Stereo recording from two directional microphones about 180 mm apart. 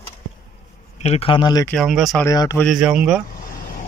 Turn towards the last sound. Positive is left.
turn(degrees=-5)  # may be behind; listen again after turning